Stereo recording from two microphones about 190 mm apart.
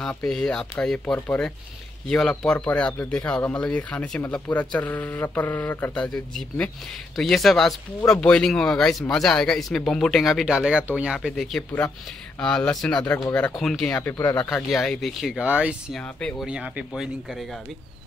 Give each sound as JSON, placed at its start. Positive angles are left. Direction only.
{"t": 0.0, "sound": "speech", "side_deg": 5}
{"t": 14.1, "sound": "speech", "side_deg": 20}
{"t": 14.4, "sound": "speech", "side_deg": 0}
{"t": 16.0, "sound": "speech", "side_deg": 5}
{"t": 16.4, "sound": "speech", "side_deg": -5}